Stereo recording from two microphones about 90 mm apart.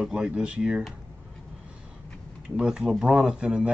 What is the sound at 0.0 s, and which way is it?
Speech, 10° right (ahead or behind).